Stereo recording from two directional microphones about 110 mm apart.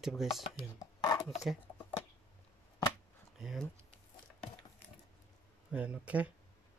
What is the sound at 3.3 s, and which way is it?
Speech, 5° right (ahead or behind).